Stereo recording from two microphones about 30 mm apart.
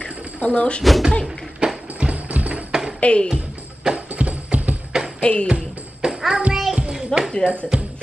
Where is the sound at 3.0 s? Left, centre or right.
Left.